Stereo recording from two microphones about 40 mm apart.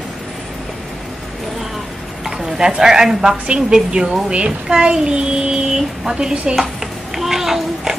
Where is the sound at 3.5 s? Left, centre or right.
Right.